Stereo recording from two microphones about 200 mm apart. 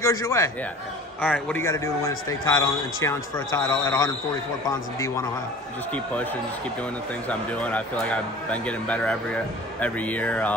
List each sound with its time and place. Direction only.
0.0 s a man's voice: 15° left (ahead or behind)
7.2 s speech: 5° left (ahead or behind)